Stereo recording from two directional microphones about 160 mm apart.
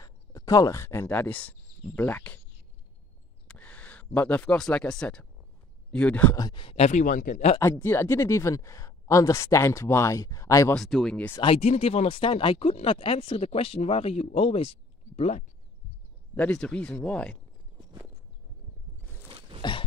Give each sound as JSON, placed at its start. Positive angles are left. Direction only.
{"t": 0.0, "sound": "speech", "side_deg": 20}
{"t": 3.4, "sound": "speech", "side_deg": 10}
{"t": 6.3, "sound": "speech", "side_deg": 25}
{"t": 7.6, "sound": "speech", "side_deg": 15}
{"t": 10.7, "sound": "speech", "side_deg": 0}
{"t": 11.4, "sound": "speech", "side_deg": 40}
{"t": 16.3, "sound": "speech", "side_deg": 5}
{"t": 19.2, "sound": "a sound", "side_deg": -35}